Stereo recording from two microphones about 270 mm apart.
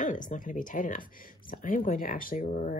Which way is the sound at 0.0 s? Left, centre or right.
Left.